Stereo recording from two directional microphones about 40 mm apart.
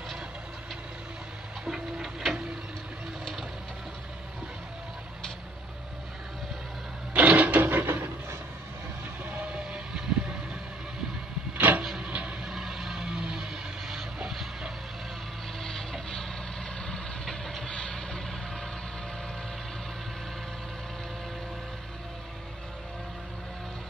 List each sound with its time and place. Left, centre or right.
1.6 s a sound: centre
7.2 s printer: right
7.7 s a sound: right
9.4 s vehicle: right
11.5 s vehicle: right
12.1 s vehicle: right
12.4 s a sound: centre
15.6 s music: centre
16.8 s vehicle: centre